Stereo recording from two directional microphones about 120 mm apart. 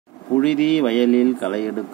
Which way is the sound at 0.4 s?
5° left (ahead or behind).